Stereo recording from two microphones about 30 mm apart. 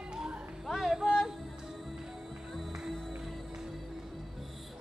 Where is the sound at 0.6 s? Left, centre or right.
Centre.